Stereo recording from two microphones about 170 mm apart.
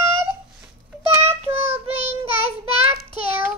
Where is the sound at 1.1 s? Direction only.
15° right (ahead or behind).